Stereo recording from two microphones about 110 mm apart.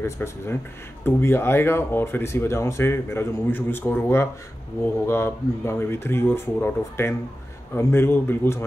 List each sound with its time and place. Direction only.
0.0 s speech: 25° left (ahead or behind)